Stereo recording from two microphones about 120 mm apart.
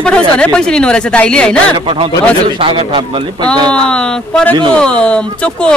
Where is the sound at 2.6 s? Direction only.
45° right (ahead or behind).